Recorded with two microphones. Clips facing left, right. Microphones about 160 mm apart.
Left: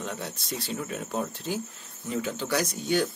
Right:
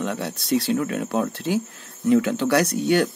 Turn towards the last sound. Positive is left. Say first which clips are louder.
# right 7 dB
turn(degrees=-70)  # may be behind; listen again after turning